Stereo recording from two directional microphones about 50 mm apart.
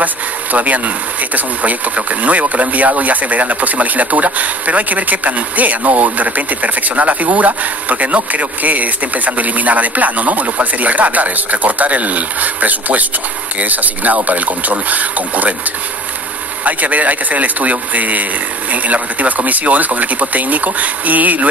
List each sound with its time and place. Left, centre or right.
0.0 s speech: right
16.6 s speech: right